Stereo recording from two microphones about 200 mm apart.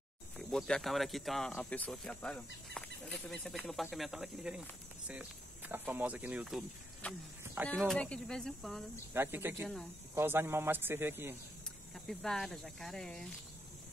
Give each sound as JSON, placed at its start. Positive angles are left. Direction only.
{"t": 0.5, "sound": "speech", "side_deg": 0}
{"t": 9.1, "sound": "a man's voice", "side_deg": -10}
{"t": 11.9, "sound": "speech", "side_deg": 0}